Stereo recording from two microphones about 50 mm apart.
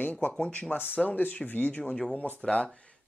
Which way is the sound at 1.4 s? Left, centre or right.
Left.